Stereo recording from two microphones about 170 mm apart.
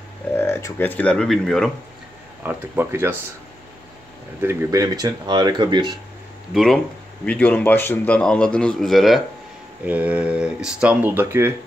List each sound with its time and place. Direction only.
0.4 s speech: 15° left (ahead or behind)
2.4 s speech: 10° right (ahead or behind)
4.4 s speech: 15° right (ahead or behind)
6.5 s a man's voice: centre (ahead or behind)